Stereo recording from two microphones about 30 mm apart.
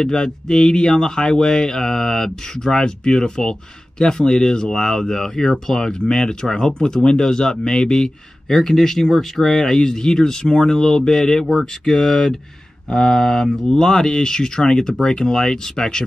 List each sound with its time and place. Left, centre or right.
0.0 s speech: left
11.4 s speech: centre